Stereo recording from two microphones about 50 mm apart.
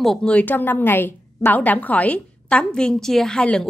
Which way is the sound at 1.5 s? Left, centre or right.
Left.